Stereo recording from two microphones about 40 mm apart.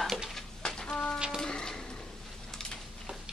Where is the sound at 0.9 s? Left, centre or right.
Left.